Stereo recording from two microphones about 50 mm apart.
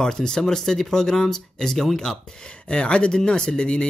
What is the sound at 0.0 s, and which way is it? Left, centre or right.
Speech, centre.